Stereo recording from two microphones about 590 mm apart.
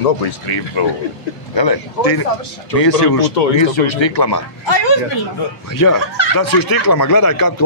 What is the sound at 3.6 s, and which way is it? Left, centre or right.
Speech, left.